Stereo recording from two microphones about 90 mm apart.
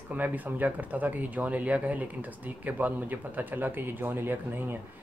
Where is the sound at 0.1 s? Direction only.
20° right (ahead or behind).